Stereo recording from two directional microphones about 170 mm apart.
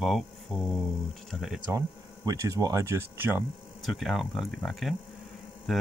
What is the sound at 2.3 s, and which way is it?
Speech, 20° right (ahead or behind).